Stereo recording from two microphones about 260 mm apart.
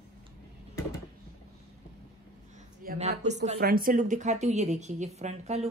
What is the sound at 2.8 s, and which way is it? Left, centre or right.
A woman's voice, right.